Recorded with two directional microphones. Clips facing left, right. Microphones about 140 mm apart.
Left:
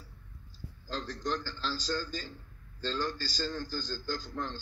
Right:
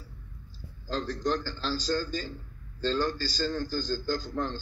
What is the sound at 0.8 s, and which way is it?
A man's voice, 50° right (ahead or behind).